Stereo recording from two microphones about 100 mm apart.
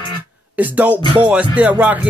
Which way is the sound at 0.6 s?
15° right (ahead or behind).